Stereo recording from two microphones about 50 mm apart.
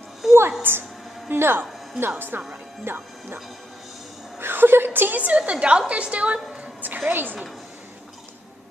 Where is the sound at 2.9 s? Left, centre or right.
Right.